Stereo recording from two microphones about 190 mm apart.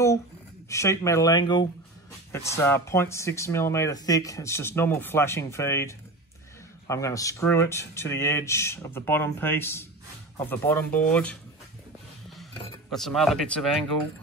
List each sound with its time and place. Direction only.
0.7 s speech: 15° left (ahead or behind)
12.9 s speech: centre (ahead or behind)